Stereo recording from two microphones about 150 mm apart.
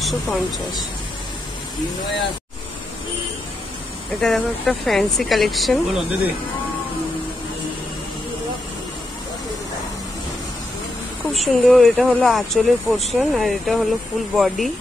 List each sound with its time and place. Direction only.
0.0 s speech: centre (ahead or behind)
4.2 s speech: 5° left (ahead or behind)
11.3 s speech: centre (ahead or behind)